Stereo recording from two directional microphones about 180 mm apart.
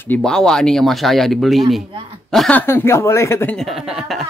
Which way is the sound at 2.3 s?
5° left (ahead or behind).